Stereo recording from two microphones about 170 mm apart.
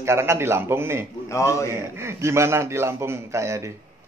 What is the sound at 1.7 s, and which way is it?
A man's voice, 15° right (ahead or behind).